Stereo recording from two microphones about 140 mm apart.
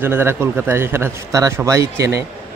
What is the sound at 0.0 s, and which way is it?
A man's voice, 15° right (ahead or behind).